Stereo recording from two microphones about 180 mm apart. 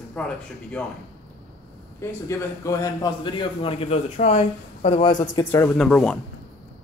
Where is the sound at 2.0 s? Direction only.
15° left (ahead or behind).